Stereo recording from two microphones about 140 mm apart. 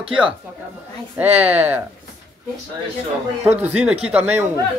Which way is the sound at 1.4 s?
10° right (ahead or behind).